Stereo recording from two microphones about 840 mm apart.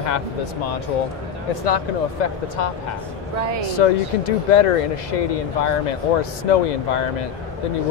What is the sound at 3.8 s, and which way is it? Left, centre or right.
Speech, left.